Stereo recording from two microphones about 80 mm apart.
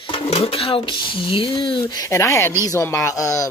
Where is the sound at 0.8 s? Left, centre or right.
Left.